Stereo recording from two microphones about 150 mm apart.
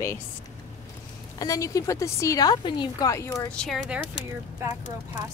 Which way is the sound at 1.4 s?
20° left (ahead or behind).